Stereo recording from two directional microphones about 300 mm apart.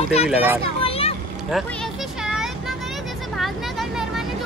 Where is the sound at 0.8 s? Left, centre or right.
Centre.